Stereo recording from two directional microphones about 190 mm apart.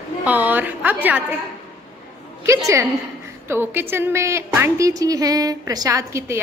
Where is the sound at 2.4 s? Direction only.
15° right (ahead or behind).